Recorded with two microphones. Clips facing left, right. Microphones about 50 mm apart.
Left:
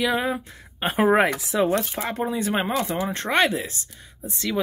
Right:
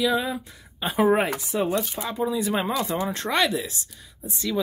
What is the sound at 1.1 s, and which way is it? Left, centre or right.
Speech, left.